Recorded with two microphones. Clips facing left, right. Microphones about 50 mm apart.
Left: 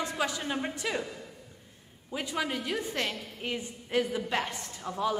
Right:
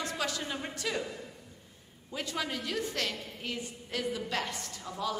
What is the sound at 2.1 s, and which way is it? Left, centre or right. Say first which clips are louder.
A woman's voice: left 3 dB; centre.